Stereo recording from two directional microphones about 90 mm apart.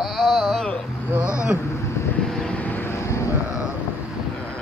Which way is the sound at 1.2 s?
35° left (ahead or behind).